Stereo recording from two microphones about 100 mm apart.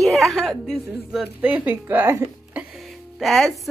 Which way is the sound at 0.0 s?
Centre (ahead or behind).